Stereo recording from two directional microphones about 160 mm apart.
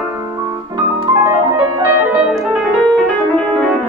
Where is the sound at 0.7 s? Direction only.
25° right (ahead or behind).